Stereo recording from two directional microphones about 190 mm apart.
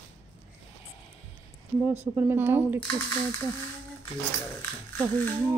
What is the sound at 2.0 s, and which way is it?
Speech, 10° right (ahead or behind).